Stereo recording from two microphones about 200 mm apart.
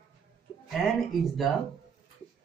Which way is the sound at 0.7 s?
Centre (ahead or behind).